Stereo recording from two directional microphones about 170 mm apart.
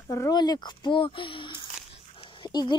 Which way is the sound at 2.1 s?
30° left (ahead or behind).